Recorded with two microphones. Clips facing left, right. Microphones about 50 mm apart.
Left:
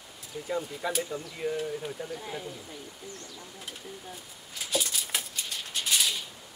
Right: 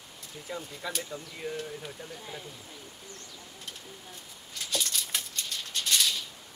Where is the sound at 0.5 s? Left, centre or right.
Centre.